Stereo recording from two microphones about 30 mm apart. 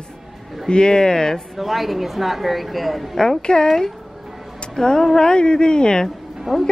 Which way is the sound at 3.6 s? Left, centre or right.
Centre.